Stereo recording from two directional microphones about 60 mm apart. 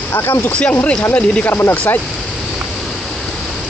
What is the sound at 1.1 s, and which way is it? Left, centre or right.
Speech, left.